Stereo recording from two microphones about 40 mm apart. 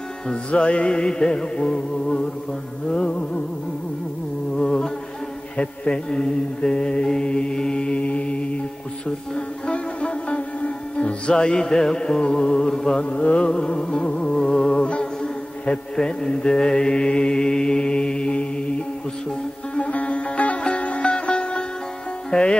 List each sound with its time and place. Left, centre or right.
0.3 s mantra: left
4.6 s mantra: centre
9.7 s music: left
11.3 s music: centre
13.1 s music: left
13.5 s mantra: centre
14.8 s humming: left
16.0 s mantra: centre
19.7 s music: left